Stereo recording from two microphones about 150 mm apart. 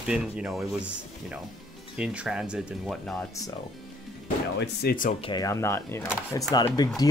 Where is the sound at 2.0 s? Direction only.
5° right (ahead or behind).